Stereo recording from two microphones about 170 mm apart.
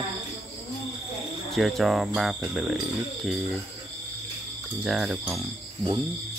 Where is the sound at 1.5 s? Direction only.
Centre (ahead or behind).